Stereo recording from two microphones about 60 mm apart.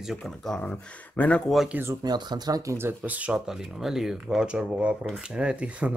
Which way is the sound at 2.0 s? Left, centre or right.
Right.